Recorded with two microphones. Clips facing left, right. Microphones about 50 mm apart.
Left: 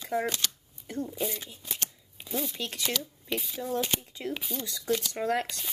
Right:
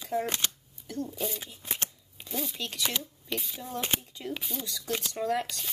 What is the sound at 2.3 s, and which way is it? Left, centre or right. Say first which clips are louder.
Speech: left 2 dB; centre.